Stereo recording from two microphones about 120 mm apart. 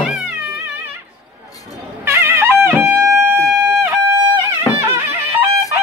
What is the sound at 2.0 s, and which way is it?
Music, 20° right (ahead or behind).